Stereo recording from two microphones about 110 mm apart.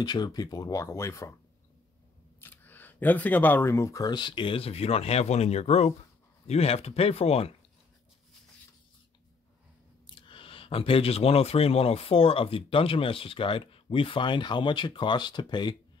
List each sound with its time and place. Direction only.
0.0 s speech: 40° left (ahead or behind)
2.4 s speech: 15° left (ahead or behind); by 7.5 s 65° left (ahead or behind)
10.0 s speech: 50° left (ahead or behind)